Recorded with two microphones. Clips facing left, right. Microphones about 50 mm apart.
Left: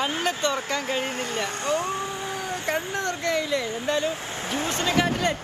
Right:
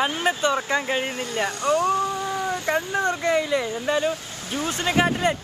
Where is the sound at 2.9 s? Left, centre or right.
Centre.